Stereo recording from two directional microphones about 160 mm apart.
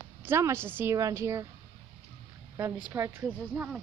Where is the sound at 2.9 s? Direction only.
15° right (ahead or behind).